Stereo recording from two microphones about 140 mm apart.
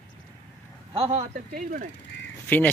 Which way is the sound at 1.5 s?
80° right.